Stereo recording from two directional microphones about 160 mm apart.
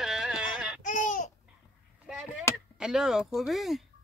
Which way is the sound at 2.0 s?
5° right (ahead or behind).